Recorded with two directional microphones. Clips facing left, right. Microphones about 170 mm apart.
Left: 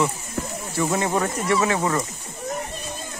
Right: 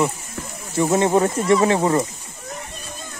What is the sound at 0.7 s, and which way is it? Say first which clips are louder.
Speech: right 6 dB; 20° right (ahead or behind).